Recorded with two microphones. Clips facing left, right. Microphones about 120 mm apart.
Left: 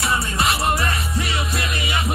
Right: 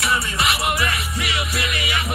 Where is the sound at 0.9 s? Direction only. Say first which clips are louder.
Left 1 dB; 70° right (ahead or behind).